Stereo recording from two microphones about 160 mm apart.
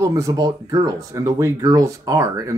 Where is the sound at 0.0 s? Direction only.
20° right (ahead or behind).